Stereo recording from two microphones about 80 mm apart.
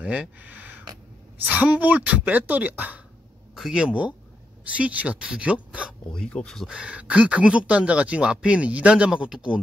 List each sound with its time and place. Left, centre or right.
0.0 s speech: centre
3.5 s speech: centre
6.1 s speech: centre
6.7 s speech: centre